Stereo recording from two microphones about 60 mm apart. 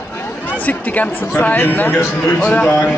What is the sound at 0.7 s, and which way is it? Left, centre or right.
Speech, left.